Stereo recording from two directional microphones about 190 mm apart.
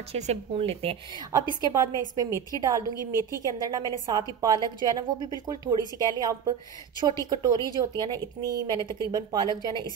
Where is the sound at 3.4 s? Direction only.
20° right (ahead or behind).